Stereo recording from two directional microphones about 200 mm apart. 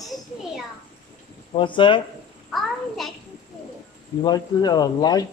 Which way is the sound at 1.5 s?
25° left (ahead or behind).